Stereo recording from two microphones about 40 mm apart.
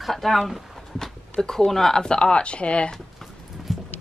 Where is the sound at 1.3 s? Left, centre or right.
Centre.